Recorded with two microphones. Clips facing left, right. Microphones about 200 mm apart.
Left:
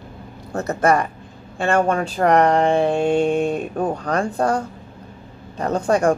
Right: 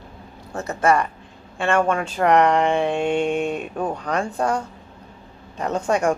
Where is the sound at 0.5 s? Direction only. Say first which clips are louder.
Left 2 dB; 40° left (ahead or behind).